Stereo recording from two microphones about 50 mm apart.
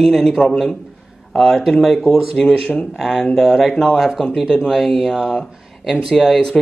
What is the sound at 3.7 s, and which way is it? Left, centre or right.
Speech, centre.